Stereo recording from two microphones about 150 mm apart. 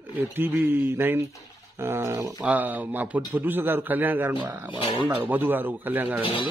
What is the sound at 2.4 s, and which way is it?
Speech, 10° right (ahead or behind).